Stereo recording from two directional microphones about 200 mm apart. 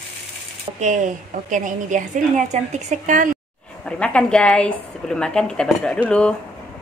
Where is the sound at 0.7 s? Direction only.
40° right (ahead or behind).